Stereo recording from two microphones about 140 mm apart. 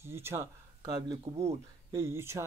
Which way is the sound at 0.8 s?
30° right (ahead or behind).